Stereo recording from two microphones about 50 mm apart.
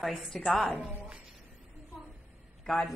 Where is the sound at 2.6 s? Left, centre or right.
Centre.